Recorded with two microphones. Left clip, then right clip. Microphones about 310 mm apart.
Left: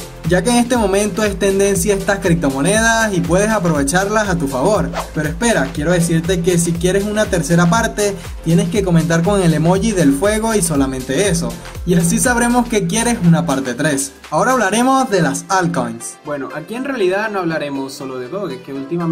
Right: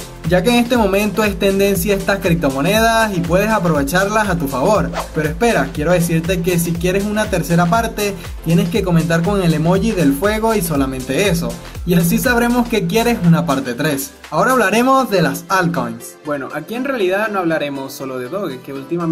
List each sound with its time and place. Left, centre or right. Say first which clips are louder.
0.3 s speech: right 1 dB; centre